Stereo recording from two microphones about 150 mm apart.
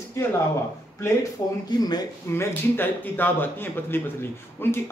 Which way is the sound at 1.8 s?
25° left (ahead or behind).